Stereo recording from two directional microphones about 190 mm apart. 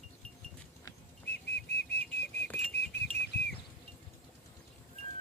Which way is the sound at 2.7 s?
60° left (ahead or behind).